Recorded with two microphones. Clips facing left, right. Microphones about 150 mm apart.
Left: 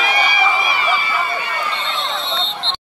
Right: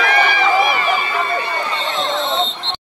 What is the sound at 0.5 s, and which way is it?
Run, 50° right (ahead or behind).